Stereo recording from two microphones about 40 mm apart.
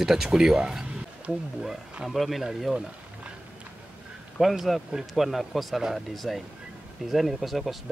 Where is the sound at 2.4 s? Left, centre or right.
Centre.